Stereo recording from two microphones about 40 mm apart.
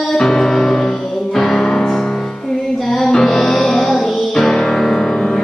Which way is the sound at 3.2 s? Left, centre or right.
Centre.